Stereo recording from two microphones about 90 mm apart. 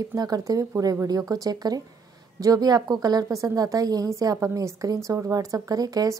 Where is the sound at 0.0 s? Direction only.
45° right (ahead or behind).